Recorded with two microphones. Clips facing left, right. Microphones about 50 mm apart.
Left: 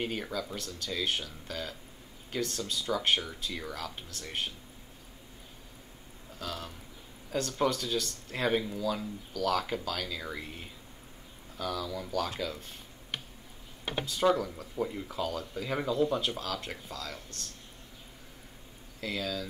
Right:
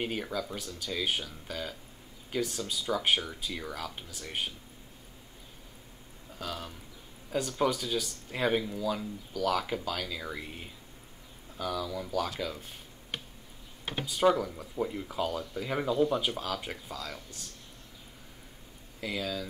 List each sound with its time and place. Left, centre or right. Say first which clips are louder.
0.0 s speech: right 1 dB; centre
6.3 s a man's voice: right 1 dB; centre
14.0 s speech: right 2 dB; centre
18.9 s speech: even; centre